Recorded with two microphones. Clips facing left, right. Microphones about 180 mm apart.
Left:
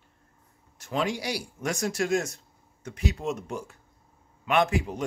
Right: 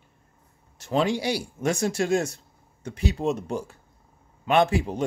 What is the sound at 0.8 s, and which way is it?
Speech, 30° right (ahead or behind).